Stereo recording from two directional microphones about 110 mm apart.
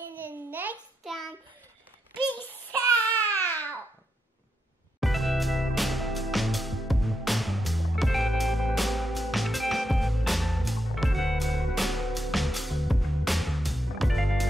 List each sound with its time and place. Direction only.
0.1 s babbling: 15° right (ahead or behind)
1.0 s child singing: centre (ahead or behind)
2.7 s baby cry: 15° left (ahead or behind)
5.0 s music: centre (ahead or behind)